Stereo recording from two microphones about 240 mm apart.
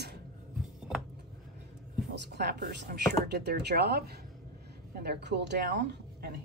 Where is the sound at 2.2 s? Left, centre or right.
Right.